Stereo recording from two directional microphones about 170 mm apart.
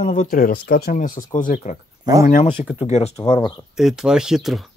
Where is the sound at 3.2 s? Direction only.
30° left (ahead or behind).